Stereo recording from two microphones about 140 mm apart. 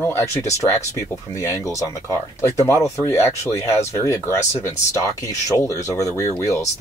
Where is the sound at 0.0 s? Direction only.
15° left (ahead or behind).